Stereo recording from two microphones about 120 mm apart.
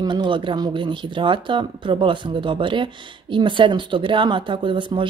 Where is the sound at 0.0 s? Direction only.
40° right (ahead or behind).